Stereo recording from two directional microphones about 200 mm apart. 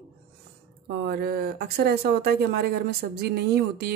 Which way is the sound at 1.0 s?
50° right (ahead or behind).